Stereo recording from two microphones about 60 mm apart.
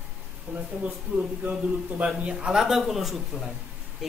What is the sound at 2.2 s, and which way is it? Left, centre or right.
Speech, right.